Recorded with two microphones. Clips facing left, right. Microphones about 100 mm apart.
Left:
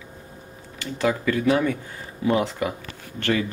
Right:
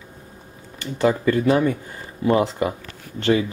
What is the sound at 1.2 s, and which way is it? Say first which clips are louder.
Speech: right 1 dB; 15° right (ahead or behind).